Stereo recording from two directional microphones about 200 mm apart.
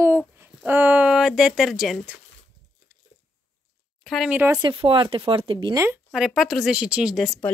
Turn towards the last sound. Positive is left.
turn(degrees=0)  # may be behind; listen again after turning